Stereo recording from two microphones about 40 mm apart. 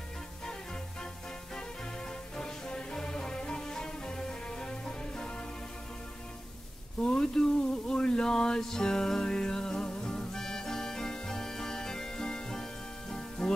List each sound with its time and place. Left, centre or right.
2.3 s music: centre
7.0 s a sound: left
10.3 s music: centre